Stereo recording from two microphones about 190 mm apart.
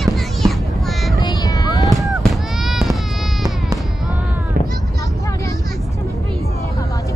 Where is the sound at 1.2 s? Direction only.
20° left (ahead or behind).